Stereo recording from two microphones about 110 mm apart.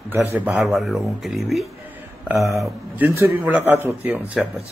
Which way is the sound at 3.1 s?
25° right (ahead or behind).